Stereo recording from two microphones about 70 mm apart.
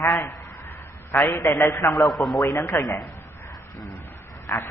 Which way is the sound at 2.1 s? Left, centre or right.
Centre.